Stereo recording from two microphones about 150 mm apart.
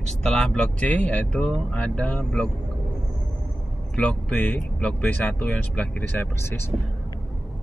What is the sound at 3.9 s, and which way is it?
Speech, 5° left (ahead or behind).